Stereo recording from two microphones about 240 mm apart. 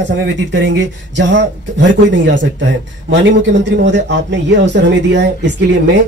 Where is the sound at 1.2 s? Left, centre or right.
Right.